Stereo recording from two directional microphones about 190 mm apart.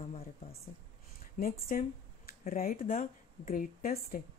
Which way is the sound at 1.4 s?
50° left (ahead or behind).